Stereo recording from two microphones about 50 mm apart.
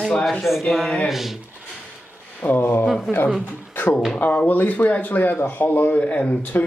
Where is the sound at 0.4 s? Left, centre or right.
Centre.